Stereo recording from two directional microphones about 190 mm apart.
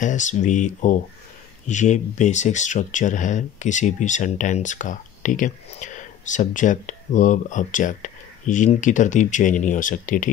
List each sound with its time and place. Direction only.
0.0 s speech: 40° left (ahead or behind)